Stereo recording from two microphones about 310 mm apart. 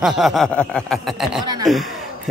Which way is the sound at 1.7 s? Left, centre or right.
Centre.